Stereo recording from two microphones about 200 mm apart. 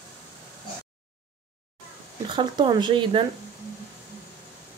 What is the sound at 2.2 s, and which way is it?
Speech, 20° right (ahead or behind).